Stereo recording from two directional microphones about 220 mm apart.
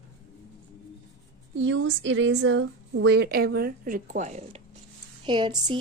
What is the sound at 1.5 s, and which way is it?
A woman's voice, 60° right (ahead or behind).